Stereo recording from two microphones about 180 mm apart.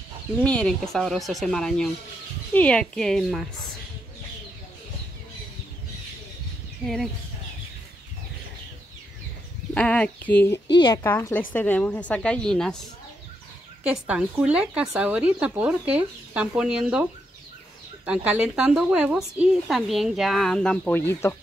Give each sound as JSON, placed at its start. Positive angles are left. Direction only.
{"t": 0.4, "sound": "a woman's voice", "side_deg": 5}
{"t": 9.8, "sound": "a woman's voice", "side_deg": 5}
{"t": 10.7, "sound": "a woman's voice", "side_deg": 25}
{"t": 11.1, "sound": "a woman's voice", "side_deg": 10}
{"t": 13.8, "sound": "a woman's voice", "side_deg": -5}